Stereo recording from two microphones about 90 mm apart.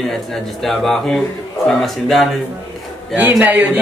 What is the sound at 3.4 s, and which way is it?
Speech, 20° right (ahead or behind).